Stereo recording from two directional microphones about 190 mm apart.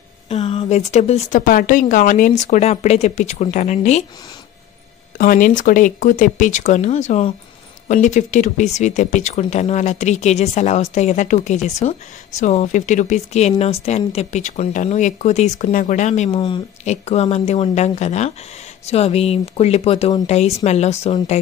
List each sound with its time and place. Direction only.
0.3 s speech: 35° left (ahead or behind)
5.1 s speech: 45° left (ahead or behind)
16.3 s speech: 25° left (ahead or behind)